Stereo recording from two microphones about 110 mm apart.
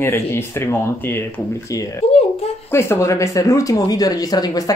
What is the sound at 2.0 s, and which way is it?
Speech, 65° left (ahead or behind).